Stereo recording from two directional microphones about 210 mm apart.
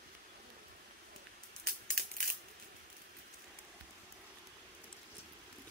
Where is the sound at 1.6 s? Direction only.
45° right (ahead or behind).